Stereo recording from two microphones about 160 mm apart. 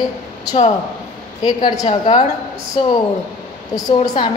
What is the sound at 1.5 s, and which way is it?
Speech, 25° left (ahead or behind).